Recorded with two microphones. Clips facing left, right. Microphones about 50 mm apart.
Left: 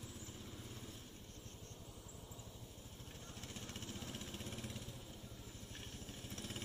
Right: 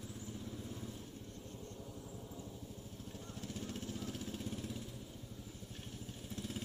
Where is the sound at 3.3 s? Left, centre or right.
Left.